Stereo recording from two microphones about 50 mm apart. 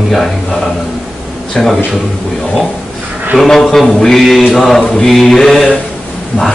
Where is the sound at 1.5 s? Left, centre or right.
Centre.